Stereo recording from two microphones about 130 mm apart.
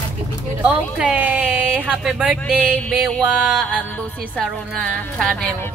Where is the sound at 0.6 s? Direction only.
10° right (ahead or behind).